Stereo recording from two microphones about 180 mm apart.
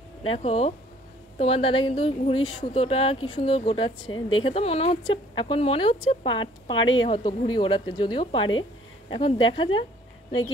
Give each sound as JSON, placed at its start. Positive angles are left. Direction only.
{"t": 0.2, "sound": "speech", "side_deg": 35}